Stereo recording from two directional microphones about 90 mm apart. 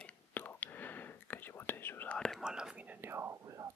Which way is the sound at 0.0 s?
20° left (ahead or behind).